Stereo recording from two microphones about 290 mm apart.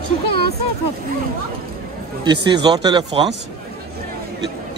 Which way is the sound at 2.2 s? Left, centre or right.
Centre.